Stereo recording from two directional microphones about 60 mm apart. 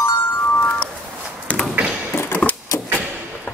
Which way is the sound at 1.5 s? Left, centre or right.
Left.